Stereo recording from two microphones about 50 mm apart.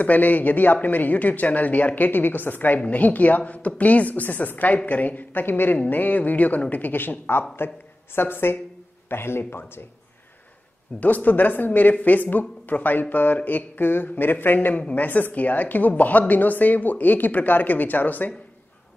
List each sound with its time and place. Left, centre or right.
0.0 s a woman's voice: left
11.0 s a woman's voice: left
14.8 s a woman's voice: left